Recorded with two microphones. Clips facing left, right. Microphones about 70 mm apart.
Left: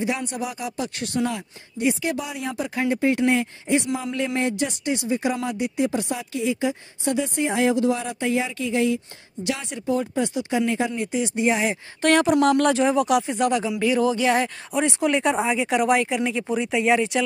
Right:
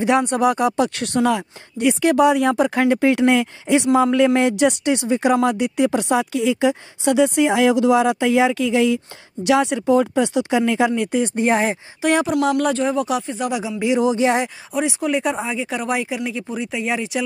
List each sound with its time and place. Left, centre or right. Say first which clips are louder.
0.0 s speech: right 10 dB; right
11.1 s speech: right 2 dB; right
12.0 s speech: even; centre
14.7 s speech: right 1 dB; centre